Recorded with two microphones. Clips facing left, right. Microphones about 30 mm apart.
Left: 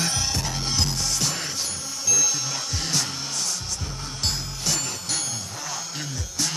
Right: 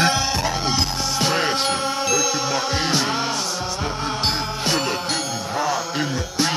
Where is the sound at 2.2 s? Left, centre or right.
Right.